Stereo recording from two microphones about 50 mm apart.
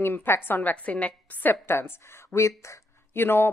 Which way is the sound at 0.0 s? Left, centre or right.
Left.